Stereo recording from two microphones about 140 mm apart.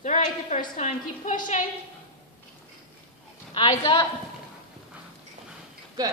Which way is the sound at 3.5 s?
35° left (ahead or behind).